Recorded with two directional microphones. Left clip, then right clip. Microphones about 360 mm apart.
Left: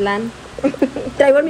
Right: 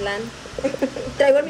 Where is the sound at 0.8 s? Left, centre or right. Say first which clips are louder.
Left 4 dB; left.